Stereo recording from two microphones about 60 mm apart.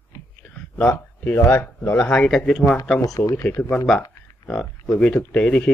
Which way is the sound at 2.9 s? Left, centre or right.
Left.